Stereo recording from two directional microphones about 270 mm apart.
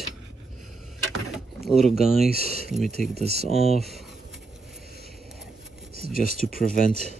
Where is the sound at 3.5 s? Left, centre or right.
Centre.